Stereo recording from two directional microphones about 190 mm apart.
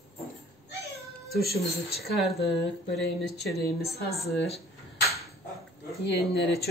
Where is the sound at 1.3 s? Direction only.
55° left (ahead or behind).